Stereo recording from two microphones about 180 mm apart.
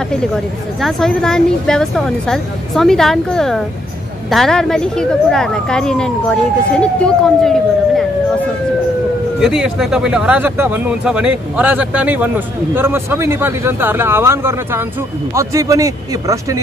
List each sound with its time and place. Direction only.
0.7 s speech: centre (ahead or behind)
9.4 s speech: 5° right (ahead or behind)